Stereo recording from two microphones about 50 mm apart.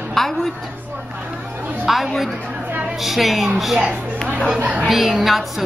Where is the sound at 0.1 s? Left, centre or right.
Centre.